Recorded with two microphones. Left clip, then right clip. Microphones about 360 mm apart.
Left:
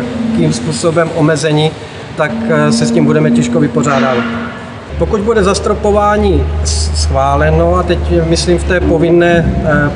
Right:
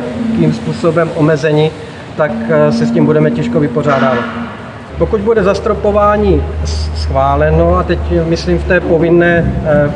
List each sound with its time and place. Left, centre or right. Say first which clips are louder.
0.5 s speech: even; centre
5.1 s speech: even; centre